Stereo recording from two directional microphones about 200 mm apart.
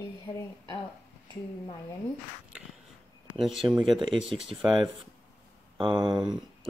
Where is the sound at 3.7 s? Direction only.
Centre (ahead or behind).